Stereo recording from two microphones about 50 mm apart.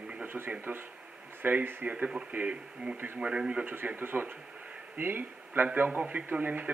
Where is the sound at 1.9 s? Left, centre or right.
Right.